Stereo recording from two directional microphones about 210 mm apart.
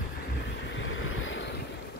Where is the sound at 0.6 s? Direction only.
65° left (ahead or behind).